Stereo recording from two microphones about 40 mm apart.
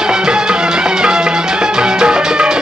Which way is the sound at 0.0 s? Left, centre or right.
Centre.